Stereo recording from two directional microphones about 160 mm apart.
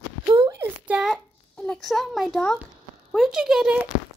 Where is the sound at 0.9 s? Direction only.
5° right (ahead or behind).